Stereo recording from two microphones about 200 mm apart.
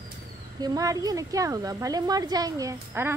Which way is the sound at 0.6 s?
20° right (ahead or behind).